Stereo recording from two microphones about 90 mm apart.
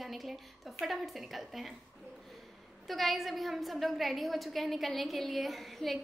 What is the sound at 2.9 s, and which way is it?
A woman's voice, centre (ahead or behind).